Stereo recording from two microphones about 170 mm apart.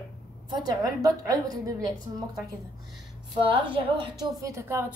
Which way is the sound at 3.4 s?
30° right (ahead or behind).